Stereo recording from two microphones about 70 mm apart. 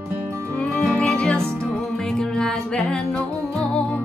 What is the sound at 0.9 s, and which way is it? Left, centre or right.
Music, centre.